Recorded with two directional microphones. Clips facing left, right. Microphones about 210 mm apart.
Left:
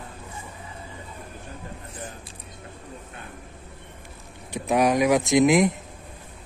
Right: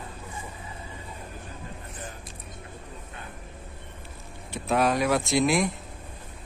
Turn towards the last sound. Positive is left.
turn(degrees=20)  # may be behind; listen again after turning